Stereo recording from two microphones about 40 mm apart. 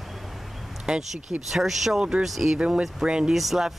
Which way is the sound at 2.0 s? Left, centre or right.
Centre.